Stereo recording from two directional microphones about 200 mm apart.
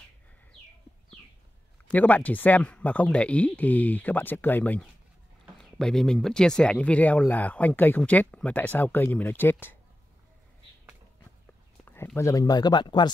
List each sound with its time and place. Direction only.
1.9 s speech: 10° left (ahead or behind)
11.8 s speech: 10° left (ahead or behind)